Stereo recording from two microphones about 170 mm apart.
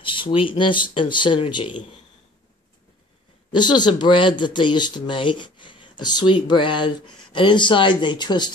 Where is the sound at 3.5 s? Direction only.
25° left (ahead or behind).